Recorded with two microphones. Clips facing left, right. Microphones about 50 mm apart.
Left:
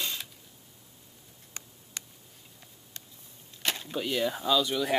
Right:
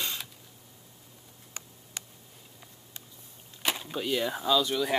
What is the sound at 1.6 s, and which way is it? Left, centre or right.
Tick, centre.